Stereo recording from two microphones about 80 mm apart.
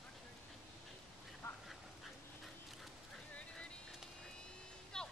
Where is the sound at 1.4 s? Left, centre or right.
Left.